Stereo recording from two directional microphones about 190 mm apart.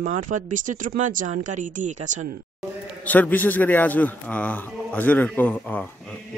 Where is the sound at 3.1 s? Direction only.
10° left (ahead or behind).